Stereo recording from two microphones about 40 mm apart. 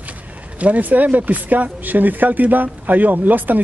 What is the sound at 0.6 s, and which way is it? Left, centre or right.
Speech, right.